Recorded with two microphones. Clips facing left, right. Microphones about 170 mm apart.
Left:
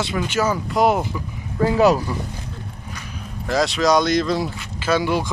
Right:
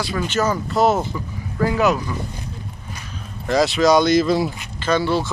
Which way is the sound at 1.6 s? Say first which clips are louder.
Left 3 dB; 30° left (ahead or behind).